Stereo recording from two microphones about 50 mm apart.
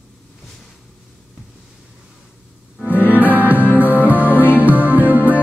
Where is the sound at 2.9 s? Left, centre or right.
Right.